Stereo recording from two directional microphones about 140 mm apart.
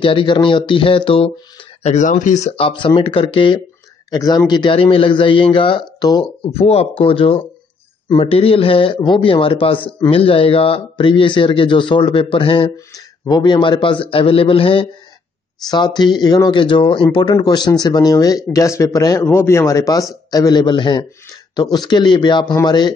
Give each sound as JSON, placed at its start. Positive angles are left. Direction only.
{"t": 0.0, "sound": "a man's voice", "side_deg": 35}
{"t": 1.8, "sound": "a man's voice", "side_deg": 55}
{"t": 4.1, "sound": "a man's voice", "side_deg": 25}
{"t": 6.6, "sound": "a man's voice", "side_deg": 45}
{"t": 12.7, "sound": "a man's voice", "side_deg": 30}